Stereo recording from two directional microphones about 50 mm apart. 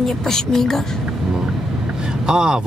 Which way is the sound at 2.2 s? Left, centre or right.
Centre.